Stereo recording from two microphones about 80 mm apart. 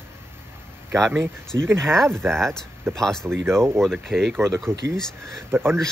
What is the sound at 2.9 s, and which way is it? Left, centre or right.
Speech, centre.